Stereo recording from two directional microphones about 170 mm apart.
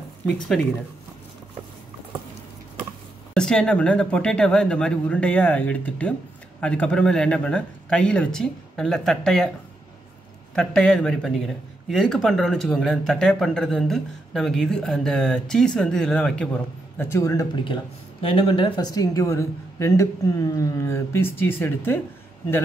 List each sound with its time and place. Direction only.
3.3 s speech: 5° left (ahead or behind)
10.5 s speech: 5° left (ahead or behind)
17.0 s a man's voice: 15° left (ahead or behind)
18.2 s speech: 30° left (ahead or behind); by 22.0 s 10° left (ahead or behind)